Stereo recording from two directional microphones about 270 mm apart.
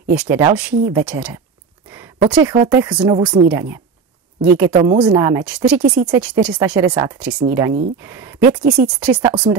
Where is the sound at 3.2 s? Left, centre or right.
Centre.